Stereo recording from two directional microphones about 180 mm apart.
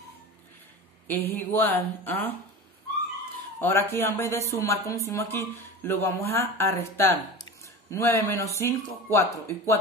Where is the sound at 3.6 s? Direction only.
15° left (ahead or behind).